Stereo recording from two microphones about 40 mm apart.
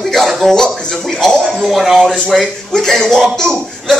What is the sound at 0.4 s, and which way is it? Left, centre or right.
Speech, centre.